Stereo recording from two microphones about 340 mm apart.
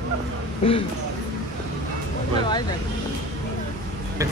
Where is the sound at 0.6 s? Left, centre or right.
Centre.